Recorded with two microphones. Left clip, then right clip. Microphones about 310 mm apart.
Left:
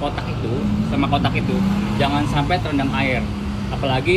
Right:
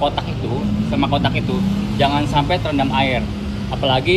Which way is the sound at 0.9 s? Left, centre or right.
Centre.